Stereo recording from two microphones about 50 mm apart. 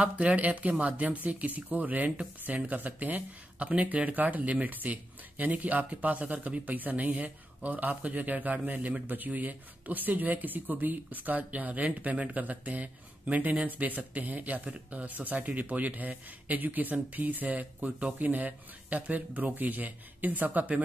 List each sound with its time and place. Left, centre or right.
0.0 s speech: right